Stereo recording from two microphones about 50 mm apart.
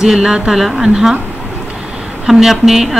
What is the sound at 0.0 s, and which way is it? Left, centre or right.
Speech, centre.